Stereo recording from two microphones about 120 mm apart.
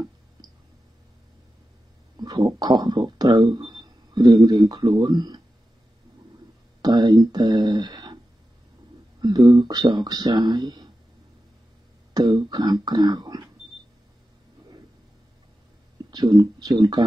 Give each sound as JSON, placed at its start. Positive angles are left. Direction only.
{"t": 0.4, "sound": "a sound", "side_deg": -35}
{"t": 2.1, "sound": "speech", "side_deg": -35}
{"t": 6.8, "sound": "speech", "side_deg": -35}
{"t": 9.2, "sound": "speech", "side_deg": -35}
{"t": 12.1, "sound": "speech", "side_deg": -35}
{"t": 16.1, "sound": "speech", "side_deg": -35}